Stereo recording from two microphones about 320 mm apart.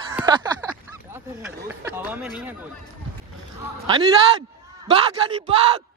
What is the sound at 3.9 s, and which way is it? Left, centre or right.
A man's voice, centre.